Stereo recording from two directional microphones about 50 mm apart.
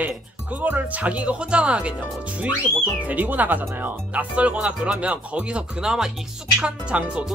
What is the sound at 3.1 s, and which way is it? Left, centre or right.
Speech, right.